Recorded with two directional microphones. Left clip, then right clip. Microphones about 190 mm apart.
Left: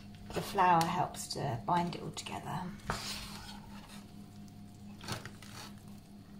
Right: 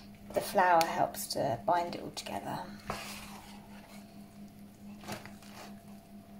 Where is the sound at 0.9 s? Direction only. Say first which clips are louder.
Right 4 dB; 40° right (ahead or behind).